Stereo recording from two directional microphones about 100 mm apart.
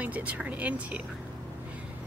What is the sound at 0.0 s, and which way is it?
Speech, 15° right (ahead or behind).